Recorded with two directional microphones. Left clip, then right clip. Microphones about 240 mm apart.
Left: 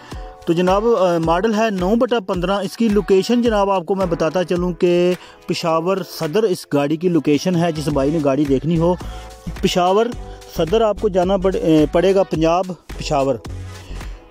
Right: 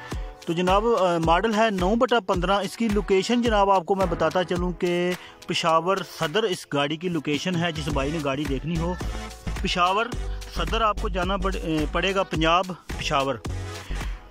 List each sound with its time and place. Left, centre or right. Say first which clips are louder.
0.5 s a man's voice: left 6 dB; centre
8.5 s a man's voice: left 12 dB; left